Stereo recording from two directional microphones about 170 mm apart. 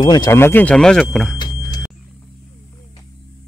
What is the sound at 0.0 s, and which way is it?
Speech, 25° left (ahead or behind).